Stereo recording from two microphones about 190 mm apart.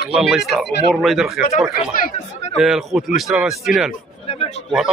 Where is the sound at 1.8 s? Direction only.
40° left (ahead or behind).